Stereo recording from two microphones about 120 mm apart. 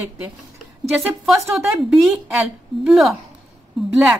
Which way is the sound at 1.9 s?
Centre (ahead or behind).